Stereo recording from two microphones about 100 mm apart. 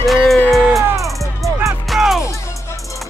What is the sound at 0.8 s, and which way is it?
Music, 30° right (ahead or behind).